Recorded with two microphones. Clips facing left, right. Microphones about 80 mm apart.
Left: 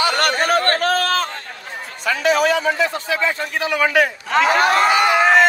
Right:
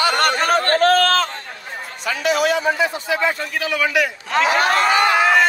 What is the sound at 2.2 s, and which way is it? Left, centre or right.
A man's voice, left.